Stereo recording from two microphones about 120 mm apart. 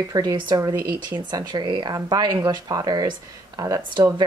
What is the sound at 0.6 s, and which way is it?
Speech, 20° right (ahead or behind).